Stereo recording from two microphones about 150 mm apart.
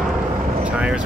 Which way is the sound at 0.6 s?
5° right (ahead or behind).